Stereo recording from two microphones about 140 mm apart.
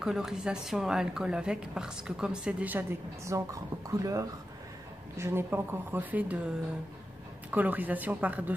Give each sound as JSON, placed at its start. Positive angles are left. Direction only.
{"t": 0.0, "sound": "a woman's voice", "side_deg": -5}
{"t": 3.3, "sound": "speech", "side_deg": -25}
{"t": 7.5, "sound": "speech", "side_deg": -10}